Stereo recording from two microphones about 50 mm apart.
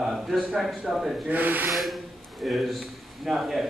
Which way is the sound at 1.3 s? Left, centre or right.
Right.